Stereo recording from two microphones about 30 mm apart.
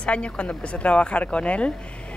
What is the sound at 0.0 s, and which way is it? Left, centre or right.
Speech, left.